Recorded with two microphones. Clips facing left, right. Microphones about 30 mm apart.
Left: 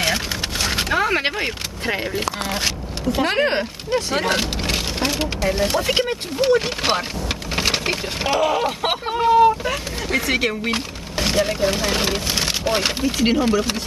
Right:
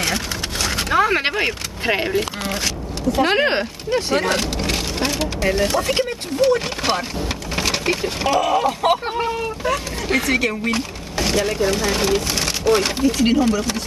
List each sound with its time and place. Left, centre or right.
0.0 s a sound: centre
0.8 s vehicle: centre
2.1 s speech: centre
3.2 s speech: centre
3.9 s speech: centre
4.3 s vehicle: centre
5.4 s speech: centre
5.7 s speech: centre
7.5 s a sound: centre
8.2 s speech: centre